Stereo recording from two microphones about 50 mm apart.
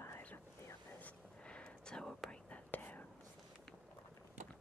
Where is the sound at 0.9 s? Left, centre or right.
Left.